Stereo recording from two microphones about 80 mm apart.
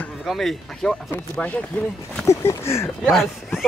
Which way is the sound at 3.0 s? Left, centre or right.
Centre.